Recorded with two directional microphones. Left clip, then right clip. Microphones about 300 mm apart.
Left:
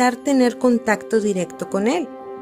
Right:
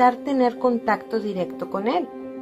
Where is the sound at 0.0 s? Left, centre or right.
Left.